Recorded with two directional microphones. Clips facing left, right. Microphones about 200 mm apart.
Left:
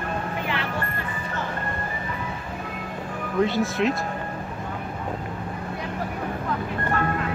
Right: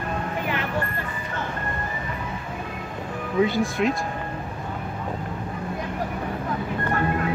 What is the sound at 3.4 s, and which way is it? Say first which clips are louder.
Speech: right 1 dB; centre (ahead or behind).